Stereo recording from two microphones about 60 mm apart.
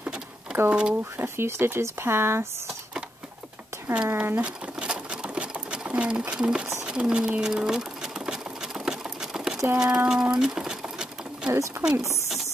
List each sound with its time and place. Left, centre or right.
0.7 s speech: centre
1.1 s speech: right
3.9 s speech: centre
4.4 s sewing machine: centre
9.8 s speech: centre
10.3 s a sound: centre
11.8 s speech: right